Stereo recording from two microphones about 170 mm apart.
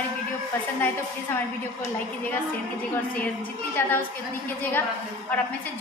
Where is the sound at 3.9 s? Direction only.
10° left (ahead or behind).